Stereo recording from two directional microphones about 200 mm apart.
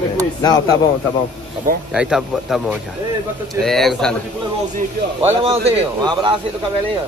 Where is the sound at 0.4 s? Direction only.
20° left (ahead or behind).